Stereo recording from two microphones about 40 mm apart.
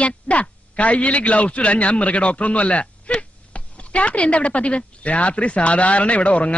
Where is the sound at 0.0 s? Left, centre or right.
Left.